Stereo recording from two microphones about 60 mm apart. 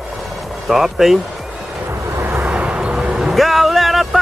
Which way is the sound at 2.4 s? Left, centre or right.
Centre.